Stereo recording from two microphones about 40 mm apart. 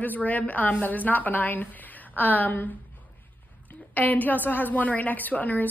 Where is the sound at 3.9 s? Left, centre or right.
Left.